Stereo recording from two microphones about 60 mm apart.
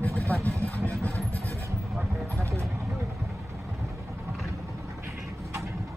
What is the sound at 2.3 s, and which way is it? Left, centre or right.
Music, right.